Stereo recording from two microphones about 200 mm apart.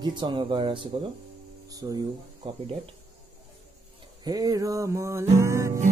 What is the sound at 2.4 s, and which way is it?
Speech, 25° right (ahead or behind).